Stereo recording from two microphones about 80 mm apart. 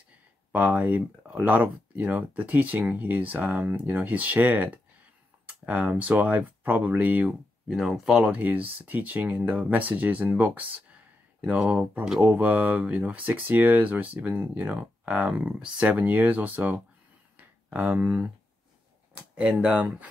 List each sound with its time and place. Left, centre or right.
0.5 s speech: right
7.6 s speech: centre; by 16.8 s right
17.4 s a sound: right
19.3 s speech: centre